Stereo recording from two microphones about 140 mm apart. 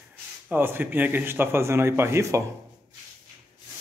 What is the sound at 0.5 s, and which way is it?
A man's voice, 15° right (ahead or behind).